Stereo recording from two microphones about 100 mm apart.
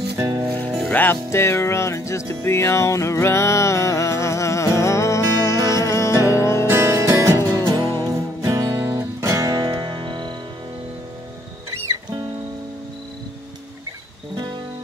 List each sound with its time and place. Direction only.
0.2 s music: 30° right (ahead or behind)
0.7 s music: centre (ahead or behind)
0.9 s music: 25° left (ahead or behind)
6.7 s music: 30° right (ahead or behind)
7.6 s music: 45° right (ahead or behind)